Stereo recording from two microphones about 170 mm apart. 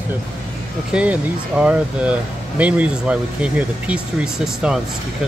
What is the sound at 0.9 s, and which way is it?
Speech, 5° right (ahead or behind).